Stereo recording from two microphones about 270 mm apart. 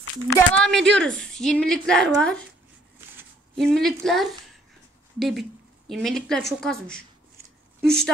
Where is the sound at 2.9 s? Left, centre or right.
Centre.